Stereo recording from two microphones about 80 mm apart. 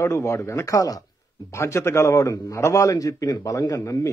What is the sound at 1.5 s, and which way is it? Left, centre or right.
A man's voice, left.